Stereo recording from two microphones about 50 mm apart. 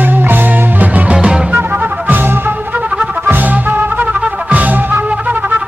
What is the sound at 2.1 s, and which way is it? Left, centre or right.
Music, right.